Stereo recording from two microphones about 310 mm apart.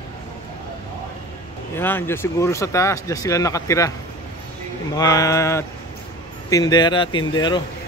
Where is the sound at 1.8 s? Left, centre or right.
Centre.